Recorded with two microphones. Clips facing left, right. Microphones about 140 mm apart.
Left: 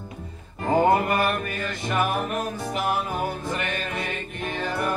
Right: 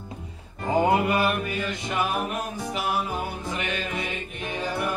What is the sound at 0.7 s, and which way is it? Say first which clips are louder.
Music: left 2 dB; 50° left (ahead or behind).